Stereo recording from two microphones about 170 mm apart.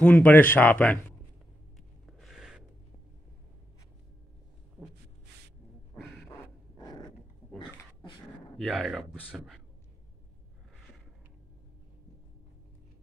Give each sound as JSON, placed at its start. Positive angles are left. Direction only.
{"t": 0.0, "sound": "speech", "side_deg": 10}
{"t": 2.0, "sound": "a sound", "side_deg": 0}
{"t": 6.2, "sound": "dog", "side_deg": 15}
{"t": 8.5, "sound": "speech", "side_deg": 0}